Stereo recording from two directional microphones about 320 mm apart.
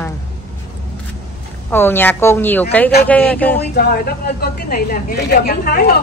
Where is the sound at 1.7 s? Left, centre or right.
Centre.